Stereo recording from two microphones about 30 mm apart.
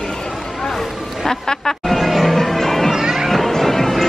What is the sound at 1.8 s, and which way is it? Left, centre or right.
Music, centre.